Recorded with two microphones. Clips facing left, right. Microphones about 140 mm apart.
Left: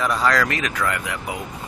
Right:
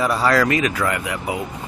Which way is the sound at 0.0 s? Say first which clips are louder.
Right 3 dB; 5° right (ahead or behind).